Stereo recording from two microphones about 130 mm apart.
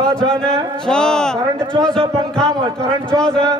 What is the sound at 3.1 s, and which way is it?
Speech, 35° right (ahead or behind).